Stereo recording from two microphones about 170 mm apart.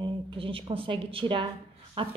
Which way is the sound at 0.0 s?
30° right (ahead or behind).